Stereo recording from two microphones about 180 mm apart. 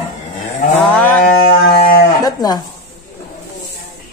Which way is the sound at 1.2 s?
50° left (ahead or behind).